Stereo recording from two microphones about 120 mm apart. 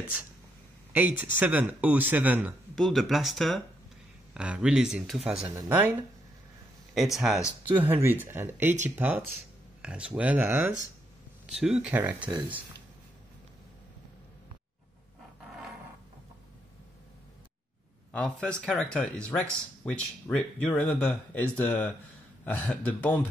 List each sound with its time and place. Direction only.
0.9 s speech: 15° right (ahead or behind)
2.7 s speech: centre (ahead or behind)
5.7 s speech: 15° right (ahead or behind)
6.9 s speech: centre (ahead or behind)
11.4 s speech: 5° right (ahead or behind)
18.1 s speech: 10° left (ahead or behind)